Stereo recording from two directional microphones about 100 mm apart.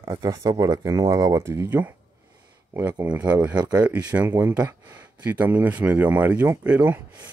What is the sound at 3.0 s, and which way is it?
Speech, 10° right (ahead or behind).